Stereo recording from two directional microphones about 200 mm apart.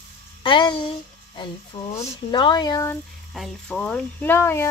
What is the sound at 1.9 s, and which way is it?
A woman's voice, 20° left (ahead or behind).